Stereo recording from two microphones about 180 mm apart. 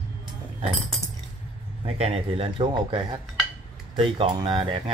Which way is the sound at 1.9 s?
35° right (ahead or behind).